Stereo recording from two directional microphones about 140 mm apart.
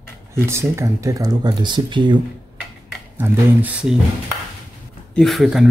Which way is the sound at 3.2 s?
15° right (ahead or behind).